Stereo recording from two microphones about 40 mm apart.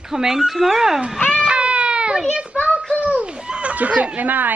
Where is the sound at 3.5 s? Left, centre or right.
Right.